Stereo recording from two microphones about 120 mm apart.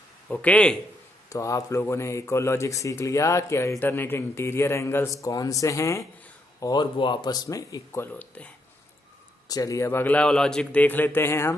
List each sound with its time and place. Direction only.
0.3 s a man's voice: 10° left (ahead or behind)
1.3 s a man's voice: 25° left (ahead or behind)
6.6 s speech: 35° left (ahead or behind); by 8.5 s 15° left (ahead or behind)
9.5 s a man's voice: 30° left (ahead or behind)